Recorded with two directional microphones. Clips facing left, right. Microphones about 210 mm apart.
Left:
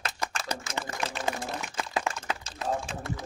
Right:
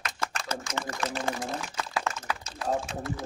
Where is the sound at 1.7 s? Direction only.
20° left (ahead or behind).